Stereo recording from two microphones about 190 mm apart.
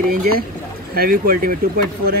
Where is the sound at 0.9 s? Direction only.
50° right (ahead or behind).